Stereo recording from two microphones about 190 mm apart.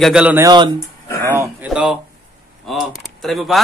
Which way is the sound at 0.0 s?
5° right (ahead or behind).